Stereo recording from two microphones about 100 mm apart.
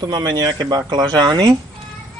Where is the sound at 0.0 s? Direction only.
45° right (ahead or behind).